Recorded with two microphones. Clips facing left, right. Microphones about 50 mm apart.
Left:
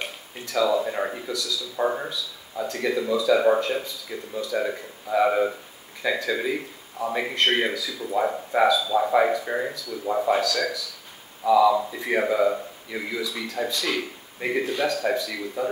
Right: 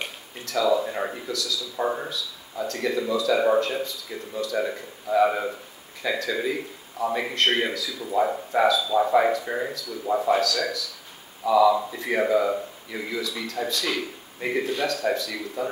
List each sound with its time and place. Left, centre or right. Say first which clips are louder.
0.5 s speech: even; centre